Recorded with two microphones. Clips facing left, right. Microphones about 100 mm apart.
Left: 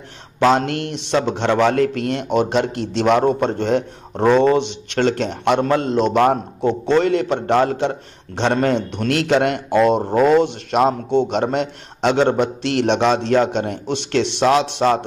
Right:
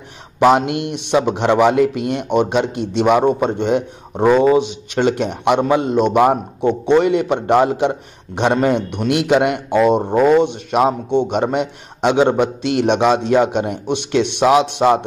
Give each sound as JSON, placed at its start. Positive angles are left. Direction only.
{"t": 0.4, "sound": "a man's voice", "side_deg": -10}